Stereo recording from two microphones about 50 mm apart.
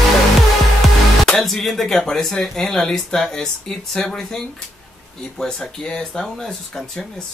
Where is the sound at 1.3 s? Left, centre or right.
Centre.